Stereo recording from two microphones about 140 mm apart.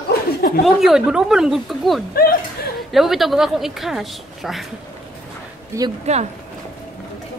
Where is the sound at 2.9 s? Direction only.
Centre (ahead or behind).